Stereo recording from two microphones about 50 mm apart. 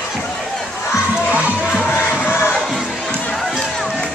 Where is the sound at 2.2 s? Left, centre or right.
Left.